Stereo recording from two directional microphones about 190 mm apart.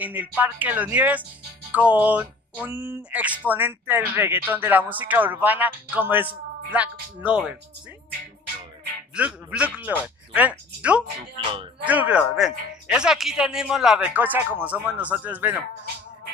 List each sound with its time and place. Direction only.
0.0 s speech: 10° right (ahead or behind)
9.1 s speech: 5° right (ahead or behind)
11.3 s speech: 25° right (ahead or behind)
11.8 s speech: 10° right (ahead or behind)